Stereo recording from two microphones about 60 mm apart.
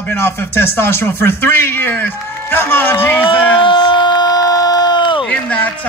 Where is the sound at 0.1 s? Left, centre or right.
Left.